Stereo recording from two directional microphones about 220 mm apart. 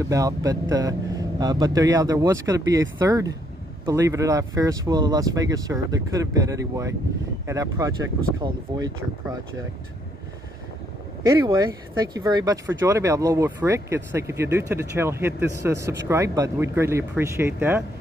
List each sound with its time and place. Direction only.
0.1 s speech: 15° right (ahead or behind)
12.2 s speech: 15° right (ahead or behind)